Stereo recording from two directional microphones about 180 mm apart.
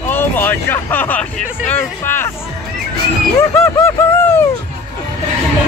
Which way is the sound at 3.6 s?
15° left (ahead or behind).